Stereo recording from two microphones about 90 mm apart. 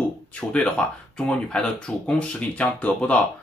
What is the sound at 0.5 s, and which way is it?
Speech, 15° left (ahead or behind).